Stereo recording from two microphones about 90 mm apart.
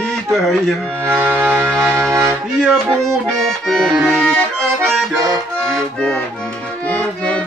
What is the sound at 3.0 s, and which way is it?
Accordion, 5° left (ahead or behind).